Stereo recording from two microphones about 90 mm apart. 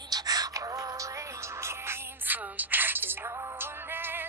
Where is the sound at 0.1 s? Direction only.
45° right (ahead or behind).